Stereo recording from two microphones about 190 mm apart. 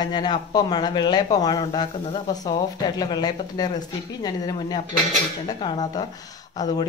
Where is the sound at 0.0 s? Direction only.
20° left (ahead or behind).